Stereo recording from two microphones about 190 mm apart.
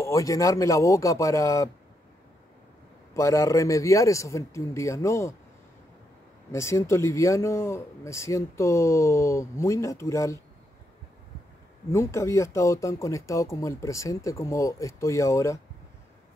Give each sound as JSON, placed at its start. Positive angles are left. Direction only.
{"t": 0.0, "sound": "speech", "side_deg": 15}
{"t": 3.2, "sound": "speech", "side_deg": 15}
{"t": 6.5, "sound": "speech", "side_deg": 15}
{"t": 11.9, "sound": "speech", "side_deg": 15}